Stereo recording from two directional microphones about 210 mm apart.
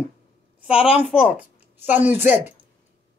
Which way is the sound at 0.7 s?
30° left (ahead or behind).